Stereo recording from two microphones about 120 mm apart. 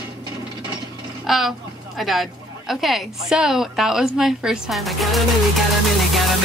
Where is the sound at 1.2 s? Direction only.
Centre (ahead or behind).